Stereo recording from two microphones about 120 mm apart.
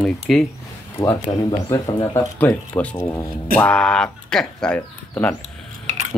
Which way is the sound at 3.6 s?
5° left (ahead or behind).